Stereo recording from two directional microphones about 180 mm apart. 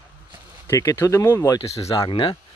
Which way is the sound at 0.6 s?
15° left (ahead or behind).